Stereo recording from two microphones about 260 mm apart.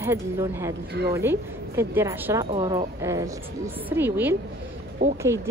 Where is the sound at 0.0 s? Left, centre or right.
Centre.